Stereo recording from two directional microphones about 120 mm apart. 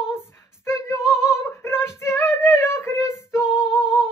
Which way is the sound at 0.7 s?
25° left (ahead or behind).